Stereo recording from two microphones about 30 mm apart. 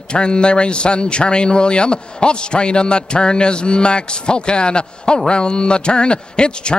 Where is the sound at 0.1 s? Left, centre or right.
Left.